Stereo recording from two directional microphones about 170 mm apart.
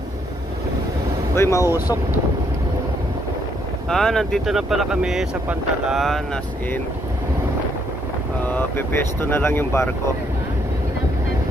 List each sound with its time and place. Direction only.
1.3 s speech: 15° left (ahead or behind)
3.9 s speech: 5° left (ahead or behind)
8.5 s speech: 10° left (ahead or behind)